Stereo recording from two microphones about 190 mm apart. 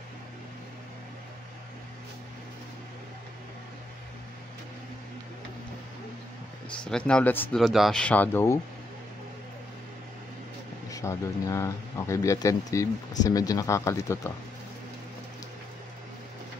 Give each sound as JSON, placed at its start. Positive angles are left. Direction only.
{"t": 6.8, "sound": "speech", "side_deg": 5}
{"t": 10.9, "sound": "speech", "side_deg": 15}